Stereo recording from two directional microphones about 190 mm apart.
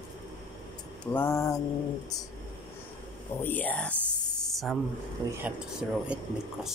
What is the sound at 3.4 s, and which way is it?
Mantra, 10° left (ahead or behind).